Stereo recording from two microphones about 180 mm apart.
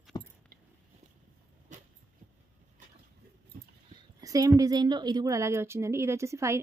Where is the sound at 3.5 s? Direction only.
55° right (ahead or behind).